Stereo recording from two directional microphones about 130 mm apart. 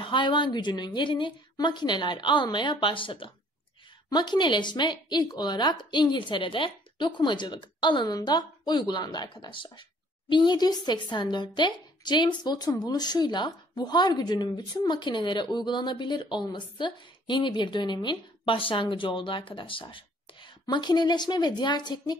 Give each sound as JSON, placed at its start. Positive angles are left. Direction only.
{"t": 0.0, "sound": "a woman's voice", "side_deg": 40}